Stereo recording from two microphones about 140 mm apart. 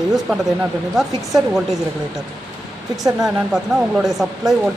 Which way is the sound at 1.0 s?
Centre (ahead or behind).